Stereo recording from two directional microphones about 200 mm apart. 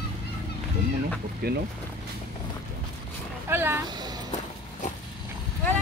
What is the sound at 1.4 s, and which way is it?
Speech, 50° right (ahead or behind).